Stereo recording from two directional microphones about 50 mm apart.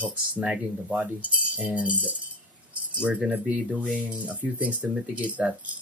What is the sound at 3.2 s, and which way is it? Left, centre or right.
Speech, right.